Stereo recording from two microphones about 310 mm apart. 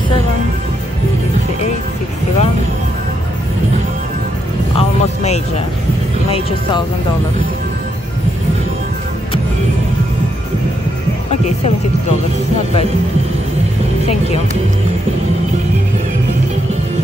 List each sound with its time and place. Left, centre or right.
4.7 s music: left
14.0 s speech: centre